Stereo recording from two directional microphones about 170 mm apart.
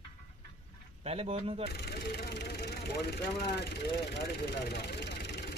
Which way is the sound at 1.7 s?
75° left (ahead or behind).